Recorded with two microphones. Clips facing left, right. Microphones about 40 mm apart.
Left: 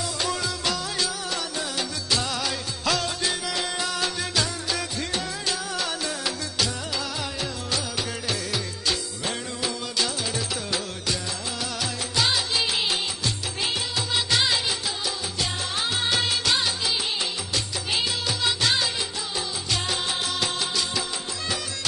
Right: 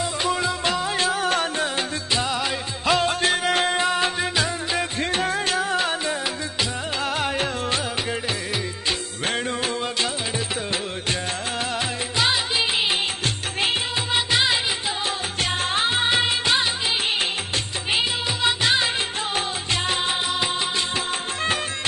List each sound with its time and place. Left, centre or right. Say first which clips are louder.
0.0 s music: right 4 dB; right
3.1 s music: right 7 dB; right
7.2 s music: right 7 dB; right
9.2 s music: right 5 dB; right
12.2 s music: right 2 dB; right
13.2 s music of bollywood: right 4 dB; right
14.3 s music: right 2 dB; right
15.7 s music of bollywood: right 5 dB; right
17.9 s music of bollywood: right 3 dB; right
19.3 s music: right 2 dB; right